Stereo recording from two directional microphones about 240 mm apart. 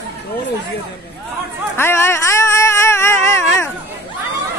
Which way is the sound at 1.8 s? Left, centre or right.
Centre.